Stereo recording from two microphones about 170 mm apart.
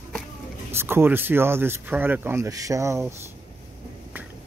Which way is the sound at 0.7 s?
15° right (ahead or behind).